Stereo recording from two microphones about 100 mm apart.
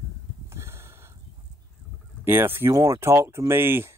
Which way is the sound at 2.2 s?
25° right (ahead or behind).